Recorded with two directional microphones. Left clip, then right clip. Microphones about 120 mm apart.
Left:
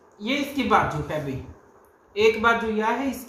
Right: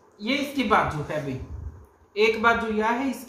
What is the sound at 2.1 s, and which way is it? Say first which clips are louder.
Speech: left 1 dB; 5° right (ahead or behind).